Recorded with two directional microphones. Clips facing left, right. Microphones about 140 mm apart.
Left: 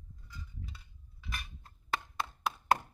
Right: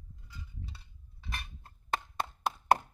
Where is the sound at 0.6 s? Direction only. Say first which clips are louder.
Right 1 dB; 35° right (ahead or behind).